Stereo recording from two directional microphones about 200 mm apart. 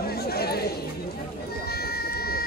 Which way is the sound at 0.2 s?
50° left (ahead or behind).